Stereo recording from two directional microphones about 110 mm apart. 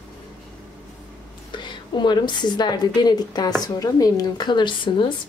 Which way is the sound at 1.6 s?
40° left (ahead or behind).